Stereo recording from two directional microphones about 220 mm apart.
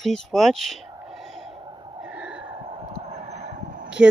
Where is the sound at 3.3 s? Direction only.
40° right (ahead or behind).